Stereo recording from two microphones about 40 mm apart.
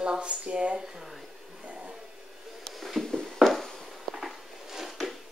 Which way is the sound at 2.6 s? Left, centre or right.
Centre.